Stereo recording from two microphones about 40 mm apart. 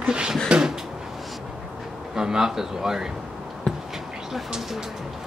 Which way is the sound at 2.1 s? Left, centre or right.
Centre.